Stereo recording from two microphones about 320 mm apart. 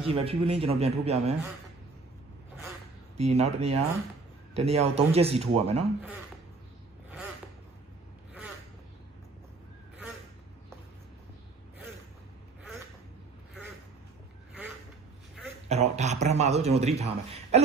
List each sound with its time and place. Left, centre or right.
0.1 s a man's voice: centre
3.2 s a man's voice: centre
15.7 s a man's voice: right